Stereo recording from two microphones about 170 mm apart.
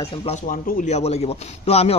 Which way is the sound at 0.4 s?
55° left (ahead or behind).